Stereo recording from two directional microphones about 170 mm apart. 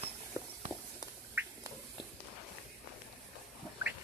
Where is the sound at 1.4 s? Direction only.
10° right (ahead or behind).